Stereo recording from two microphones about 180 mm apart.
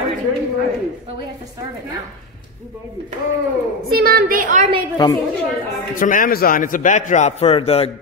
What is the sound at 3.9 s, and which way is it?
Speech, 55° right (ahead or behind).